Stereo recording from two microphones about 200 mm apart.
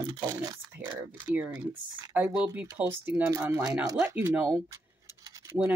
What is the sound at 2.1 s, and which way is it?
Speech, 10° right (ahead or behind).